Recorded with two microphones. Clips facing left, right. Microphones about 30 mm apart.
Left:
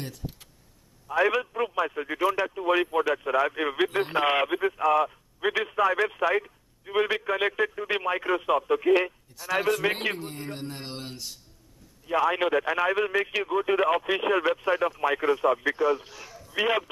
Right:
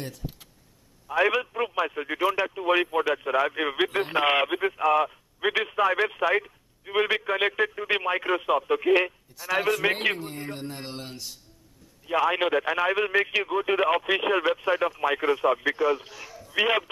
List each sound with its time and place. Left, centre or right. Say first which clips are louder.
1.0 s a man's voice: right 1 dB; centre
1.4 s a sound: even; centre
1.9 s speech: even; centre
2.5 s speech: right 1 dB; centre
4.3 s speech: right 1 dB; centre
9.4 s a man's voice: right 1 dB; centre
12.1 s a man's voice: even; centre
16.5 s speech: right 2 dB; centre